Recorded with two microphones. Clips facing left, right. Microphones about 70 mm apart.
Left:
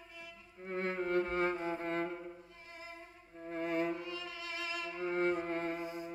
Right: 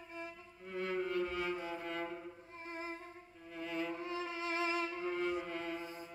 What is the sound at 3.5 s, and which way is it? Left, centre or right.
Music, left.